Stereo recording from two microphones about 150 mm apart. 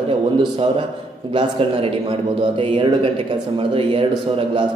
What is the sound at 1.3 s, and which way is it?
A man's voice, 35° right (ahead or behind).